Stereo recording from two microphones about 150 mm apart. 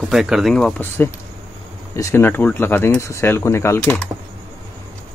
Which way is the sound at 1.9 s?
20° left (ahead or behind).